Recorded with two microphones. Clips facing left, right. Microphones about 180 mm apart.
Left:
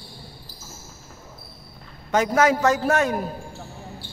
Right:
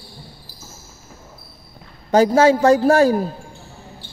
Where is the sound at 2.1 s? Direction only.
30° right (ahead or behind).